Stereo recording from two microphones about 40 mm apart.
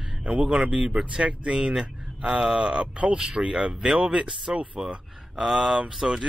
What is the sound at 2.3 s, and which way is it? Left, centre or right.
Speech, centre.